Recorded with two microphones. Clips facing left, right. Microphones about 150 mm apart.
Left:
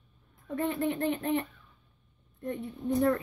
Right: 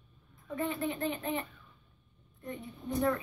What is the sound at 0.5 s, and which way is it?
Speech, 65° left (ahead or behind).